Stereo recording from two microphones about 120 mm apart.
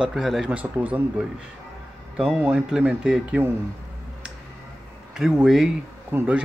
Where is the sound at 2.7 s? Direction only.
5° right (ahead or behind).